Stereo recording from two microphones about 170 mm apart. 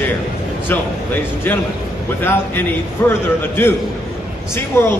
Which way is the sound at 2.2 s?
10° left (ahead or behind).